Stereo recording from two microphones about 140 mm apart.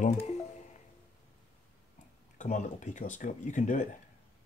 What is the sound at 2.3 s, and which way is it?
Speech, 60° left (ahead or behind).